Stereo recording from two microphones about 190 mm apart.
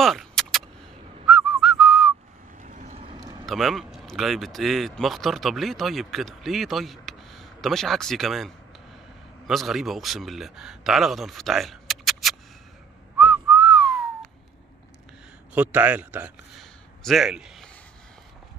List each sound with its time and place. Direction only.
0.0 s vehicle: centre (ahead or behind)
1.2 s whistling: centre (ahead or behind)
2.6 s vehicle: 40° right (ahead or behind)
3.4 s a man's voice: centre (ahead or behind)
13.2 s whistling: 5° right (ahead or behind)
15.5 s a man's voice: 10° right (ahead or behind)